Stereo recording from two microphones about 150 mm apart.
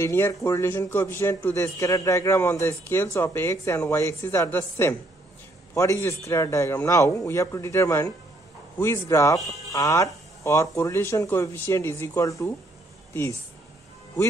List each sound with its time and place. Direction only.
0.0 s a man's voice: 20° left (ahead or behind)